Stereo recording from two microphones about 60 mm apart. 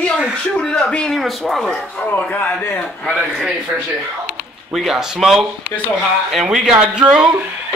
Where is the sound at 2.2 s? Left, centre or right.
Left.